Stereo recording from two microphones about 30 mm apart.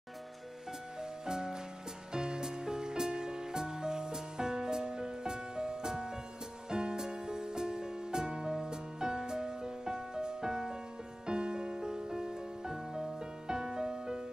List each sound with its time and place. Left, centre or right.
1.2 s music: right